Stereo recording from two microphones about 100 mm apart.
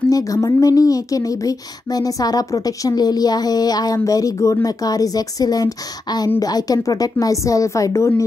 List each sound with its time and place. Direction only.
0.1 s speech: 35° left (ahead or behind)